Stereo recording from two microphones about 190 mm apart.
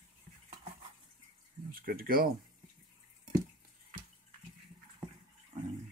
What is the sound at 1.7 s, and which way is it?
Speech, 50° right (ahead or behind).